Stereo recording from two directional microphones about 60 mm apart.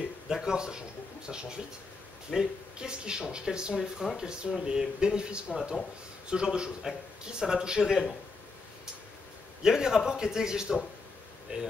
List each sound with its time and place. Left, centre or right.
0.3 s speech: centre
9.6 s speech: centre